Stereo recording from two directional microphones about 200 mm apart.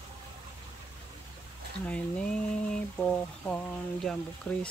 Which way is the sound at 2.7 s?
5° left (ahead or behind).